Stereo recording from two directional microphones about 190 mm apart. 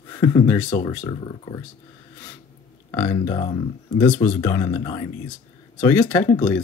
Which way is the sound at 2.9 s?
15° left (ahead or behind).